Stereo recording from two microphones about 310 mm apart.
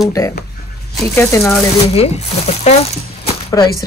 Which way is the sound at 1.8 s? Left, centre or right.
Centre.